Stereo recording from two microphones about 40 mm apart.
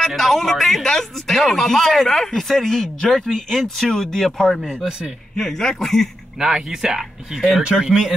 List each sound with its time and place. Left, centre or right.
0.0 s a man's voice: centre
6.4 s speech: centre
7.0 s speech: centre
7.6 s speech: right